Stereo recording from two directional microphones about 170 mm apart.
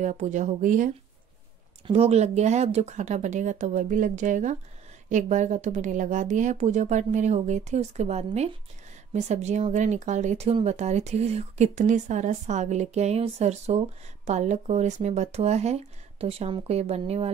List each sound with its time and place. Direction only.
0.0 s speech: 45° right (ahead or behind)
1.9 s speech: 35° right (ahead or behind)